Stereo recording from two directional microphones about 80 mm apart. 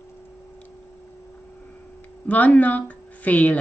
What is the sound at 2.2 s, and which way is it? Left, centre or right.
A woman's voice, centre.